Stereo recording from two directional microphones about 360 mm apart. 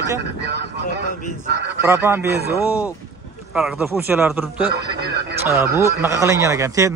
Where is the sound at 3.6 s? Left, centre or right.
Centre.